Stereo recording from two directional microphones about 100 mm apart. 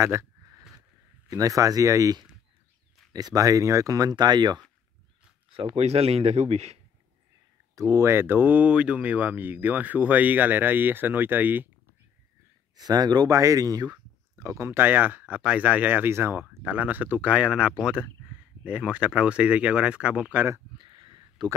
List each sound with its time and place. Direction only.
0.0 s a sound: 30° right (ahead or behind)
1.3 s speech: 35° right (ahead or behind)
5.5 s speech: 75° right (ahead or behind)
7.9 s speech: 25° right (ahead or behind)
12.7 s speech: 40° right (ahead or behind); by 20.4 s 15° right (ahead or behind)
20.7 s a sound: 55° right (ahead or behind)